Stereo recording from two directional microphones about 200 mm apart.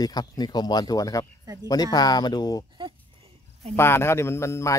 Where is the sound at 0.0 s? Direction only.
20° left (ahead or behind).